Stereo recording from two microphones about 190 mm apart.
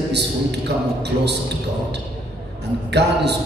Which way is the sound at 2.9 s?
60° right (ahead or behind).